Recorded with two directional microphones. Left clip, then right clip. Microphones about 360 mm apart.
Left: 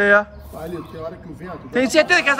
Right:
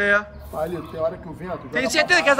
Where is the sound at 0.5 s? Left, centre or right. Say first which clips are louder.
Right 5 dB; centre.